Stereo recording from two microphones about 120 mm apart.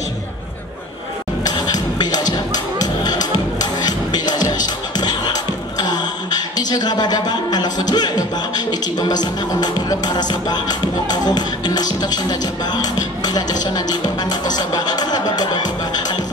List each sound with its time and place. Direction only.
1.4 s music: 35° left (ahead or behind)
4.9 s speech: 35° left (ahead or behind)